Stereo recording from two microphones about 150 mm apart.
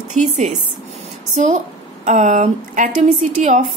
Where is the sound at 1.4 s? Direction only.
55° right (ahead or behind).